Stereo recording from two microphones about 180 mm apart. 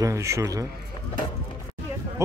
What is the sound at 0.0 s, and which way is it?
Speech, 15° right (ahead or behind).